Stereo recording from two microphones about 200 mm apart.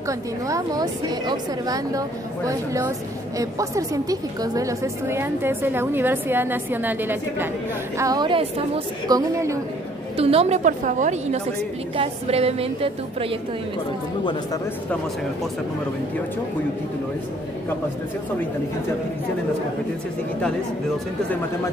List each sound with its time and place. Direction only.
0.5 s a woman's voice: 20° right (ahead or behind)
8.0 s a woman's voice: 20° right (ahead or behind)
10.1 s a woman's voice: 30° right (ahead or behind)